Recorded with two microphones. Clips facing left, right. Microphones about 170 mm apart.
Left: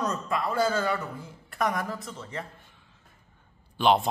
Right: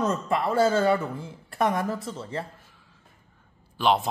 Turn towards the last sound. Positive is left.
turn(degrees=0)  # may be behind; listen again after turning